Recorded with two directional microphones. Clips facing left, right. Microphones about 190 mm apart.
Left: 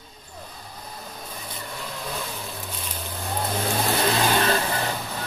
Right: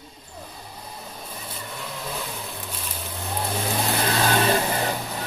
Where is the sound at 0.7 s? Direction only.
5° right (ahead or behind).